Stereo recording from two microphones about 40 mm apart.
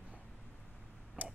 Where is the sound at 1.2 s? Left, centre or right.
Right.